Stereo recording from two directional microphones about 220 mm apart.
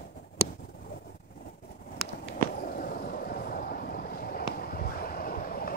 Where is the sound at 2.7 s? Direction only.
40° left (ahead or behind).